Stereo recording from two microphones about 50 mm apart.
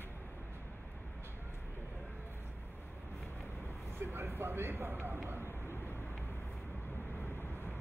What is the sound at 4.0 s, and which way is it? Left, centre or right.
Speech, right.